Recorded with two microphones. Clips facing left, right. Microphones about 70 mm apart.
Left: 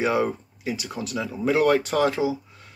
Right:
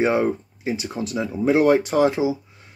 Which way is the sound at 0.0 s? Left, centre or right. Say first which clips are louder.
Right 3 dB; right.